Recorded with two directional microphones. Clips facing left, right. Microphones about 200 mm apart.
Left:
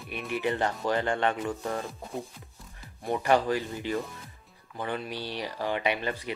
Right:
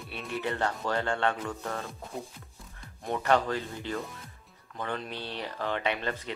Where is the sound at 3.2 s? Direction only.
10° left (ahead or behind).